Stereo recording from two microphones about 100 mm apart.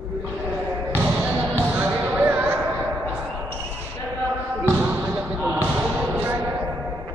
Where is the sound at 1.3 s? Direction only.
20° right (ahead or behind).